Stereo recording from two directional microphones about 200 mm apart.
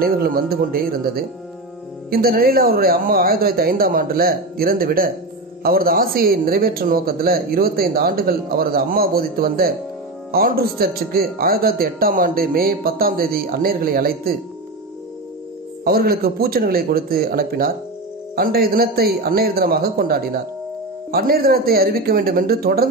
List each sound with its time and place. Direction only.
0.0 s speech: 50° right (ahead or behind)
15.8 s speech: 50° right (ahead or behind)